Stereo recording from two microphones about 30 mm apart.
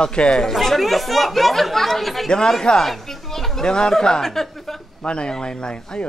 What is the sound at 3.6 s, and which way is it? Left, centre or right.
Speech, left.